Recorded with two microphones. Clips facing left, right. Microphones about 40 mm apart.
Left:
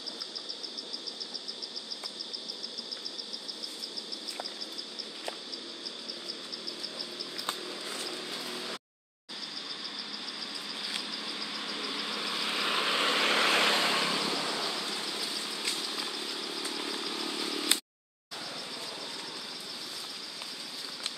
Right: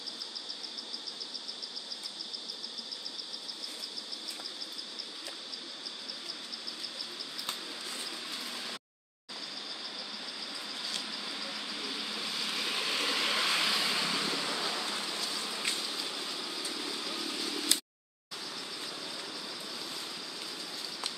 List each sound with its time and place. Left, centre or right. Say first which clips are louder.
11.7 s vehicle: left 4 dB; centre
14.1 s vehicle: left 2 dB; centre
16.5 s vehicle: left 2 dB; left
17.5 s a sound: left 2 dB; centre